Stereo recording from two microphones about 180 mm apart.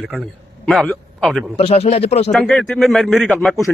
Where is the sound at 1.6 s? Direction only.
35° left (ahead or behind).